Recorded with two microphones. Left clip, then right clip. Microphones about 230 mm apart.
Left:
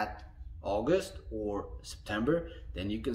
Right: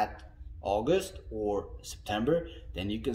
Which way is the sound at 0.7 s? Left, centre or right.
Centre.